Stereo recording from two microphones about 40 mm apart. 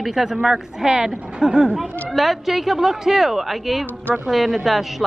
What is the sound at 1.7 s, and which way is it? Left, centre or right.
A woman's voice, centre.